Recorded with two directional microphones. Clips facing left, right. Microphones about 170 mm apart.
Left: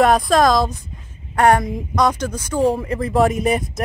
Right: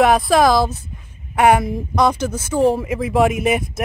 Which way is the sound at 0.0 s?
5° right (ahead or behind).